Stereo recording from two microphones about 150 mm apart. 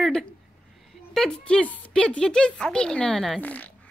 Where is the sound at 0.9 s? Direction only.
Centre (ahead or behind).